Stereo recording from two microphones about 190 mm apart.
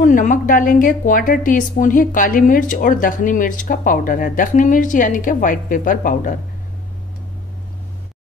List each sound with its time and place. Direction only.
0.0 s a woman's voice: 45° left (ahead or behind)